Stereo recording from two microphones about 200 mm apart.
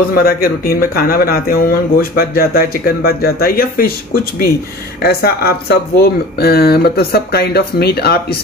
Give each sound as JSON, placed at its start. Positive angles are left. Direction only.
{"t": 0.1, "sound": "speech", "side_deg": 45}